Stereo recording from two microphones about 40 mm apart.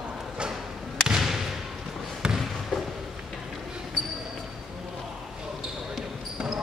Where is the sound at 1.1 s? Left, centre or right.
Centre.